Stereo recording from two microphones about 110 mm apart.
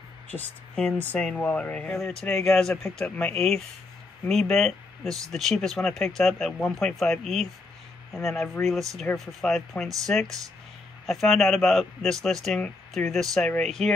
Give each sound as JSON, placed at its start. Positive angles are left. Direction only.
{"t": 0.3, "sound": "speech", "side_deg": 10}
{"t": 2.2, "sound": "speech", "side_deg": 25}
{"t": 3.0, "sound": "speech", "side_deg": 10}